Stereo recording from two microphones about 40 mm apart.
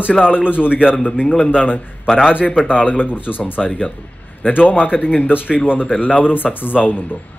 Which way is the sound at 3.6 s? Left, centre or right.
Centre.